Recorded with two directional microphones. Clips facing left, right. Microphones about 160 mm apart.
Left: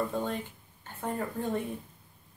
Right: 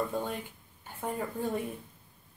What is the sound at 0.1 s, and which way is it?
Speech, centre (ahead or behind).